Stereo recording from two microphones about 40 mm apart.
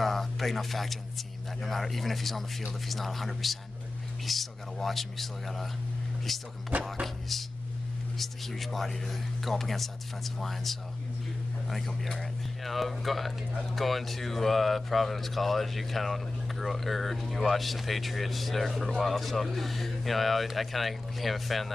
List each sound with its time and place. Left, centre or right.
0.0 s speech: centre
6.7 s speech: right
8.2 s speech: centre